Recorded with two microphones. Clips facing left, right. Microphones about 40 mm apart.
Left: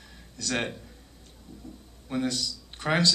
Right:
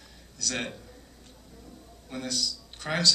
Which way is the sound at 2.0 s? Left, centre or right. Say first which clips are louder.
Left 4 dB; centre.